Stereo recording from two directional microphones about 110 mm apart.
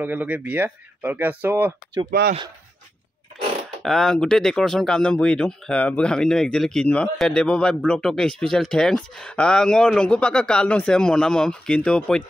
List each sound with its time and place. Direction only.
0.0 s speech: 15° right (ahead or behind)
3.8 s speech: 5° left (ahead or behind)